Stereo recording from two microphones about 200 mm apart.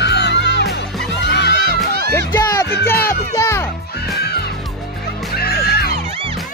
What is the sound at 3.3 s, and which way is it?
Music, 15° left (ahead or behind).